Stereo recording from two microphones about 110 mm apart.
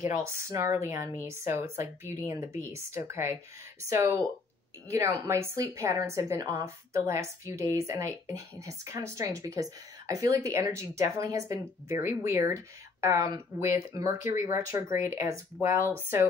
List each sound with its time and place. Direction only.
0.0 s speech: 25° right (ahead or behind)